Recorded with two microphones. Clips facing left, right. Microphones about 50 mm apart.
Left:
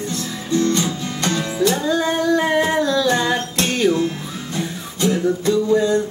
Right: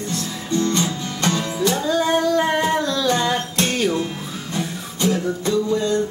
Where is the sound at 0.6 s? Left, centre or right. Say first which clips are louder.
Left 2 dB; right.